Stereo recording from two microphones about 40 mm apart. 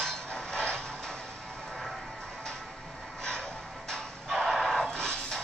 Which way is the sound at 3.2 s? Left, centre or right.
Centre.